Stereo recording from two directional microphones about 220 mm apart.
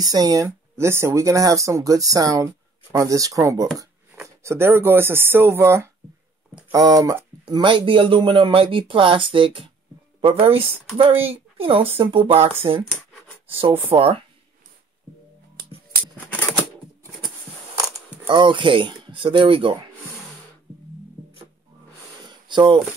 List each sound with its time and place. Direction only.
0.0 s speech: 15° right (ahead or behind)
13.8 s speech: 25° right (ahead or behind)
17.9 s speech: 20° right (ahead or behind)
22.3 s a sound: 20° right (ahead or behind)